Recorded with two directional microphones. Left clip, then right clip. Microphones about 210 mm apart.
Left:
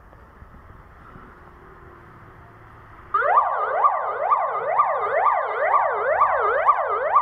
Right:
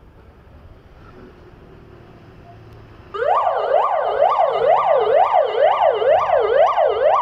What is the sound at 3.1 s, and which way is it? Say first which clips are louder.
Emergency vehicle: right 1 dB; 30° right (ahead or behind).